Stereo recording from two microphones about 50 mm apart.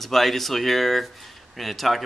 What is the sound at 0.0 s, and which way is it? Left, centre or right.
Speech, centre.